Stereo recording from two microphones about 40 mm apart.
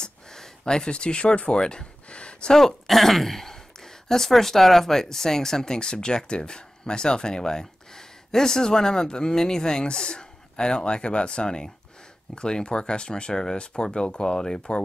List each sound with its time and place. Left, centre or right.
0.0 s speech: centre
2.0 s a sound: left
2.5 s speech: centre